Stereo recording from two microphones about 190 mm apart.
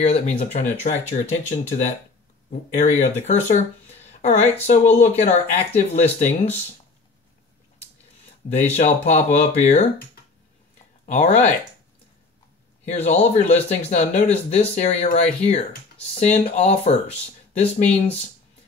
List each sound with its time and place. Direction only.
0.0 s speech: 35° left (ahead or behind)
8.5 s speech: 35° left (ahead or behind)
11.1 s speech: 35° left (ahead or behind)
12.8 s speech: 35° left (ahead or behind)